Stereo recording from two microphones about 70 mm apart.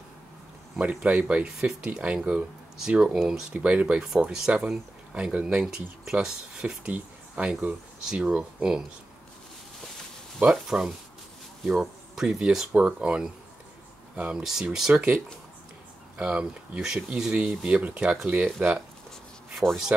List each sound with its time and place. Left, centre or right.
0.7 s speech: centre
10.4 s speech: centre
15.0 s speech: centre
19.6 s speech: centre